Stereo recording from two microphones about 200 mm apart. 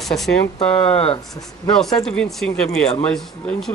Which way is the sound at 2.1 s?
5° left (ahead or behind).